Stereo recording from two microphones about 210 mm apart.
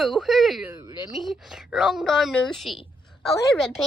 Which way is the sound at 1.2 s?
Centre (ahead or behind).